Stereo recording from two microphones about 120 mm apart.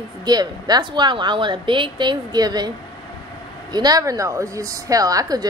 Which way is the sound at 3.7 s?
35° right (ahead or behind).